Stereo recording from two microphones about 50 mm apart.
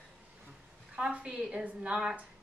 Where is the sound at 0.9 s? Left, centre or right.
Right.